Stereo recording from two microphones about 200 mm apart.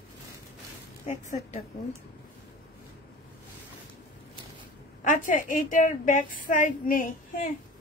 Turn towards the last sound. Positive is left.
turn(degrees=40)  # may be behind; listen again after turning